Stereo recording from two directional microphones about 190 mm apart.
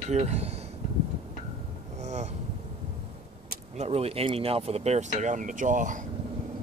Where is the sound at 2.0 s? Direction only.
35° right (ahead or behind).